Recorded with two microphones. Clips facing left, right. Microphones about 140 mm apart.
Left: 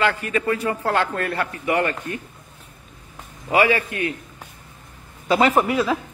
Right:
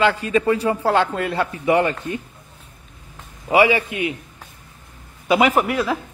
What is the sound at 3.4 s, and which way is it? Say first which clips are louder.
Speech: right 3 dB; 15° right (ahead or behind).